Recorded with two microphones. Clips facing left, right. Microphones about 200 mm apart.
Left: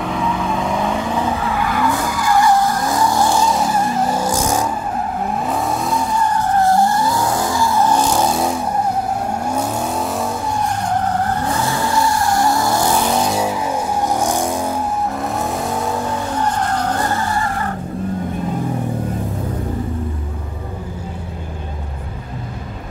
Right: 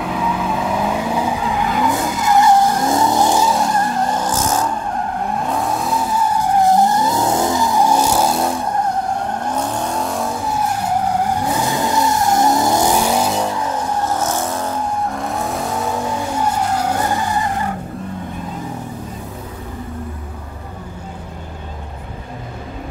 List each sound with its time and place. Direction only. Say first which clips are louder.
0.0 s vehicle: even; 5° right (ahead or behind); by 3.3 s 20° right (ahead or behind)
3.3 s vehicle: even; centre (ahead or behind)
5.3 s vehicle: even; centre (ahead or behind)
13.4 s car: left 1 dB; 10° left (ahead or behind)
15.3 s vehicle: left 1 dB; centre (ahead or behind); by 17.6 s 15° right (ahead or behind)